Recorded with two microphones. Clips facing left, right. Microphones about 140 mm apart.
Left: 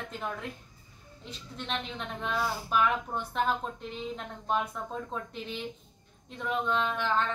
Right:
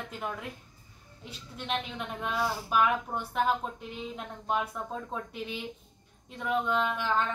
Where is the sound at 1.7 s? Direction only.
5° right (ahead or behind).